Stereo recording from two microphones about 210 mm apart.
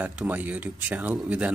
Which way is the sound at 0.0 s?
10° right (ahead or behind).